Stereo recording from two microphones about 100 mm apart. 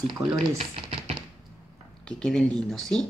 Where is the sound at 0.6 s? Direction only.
90° right.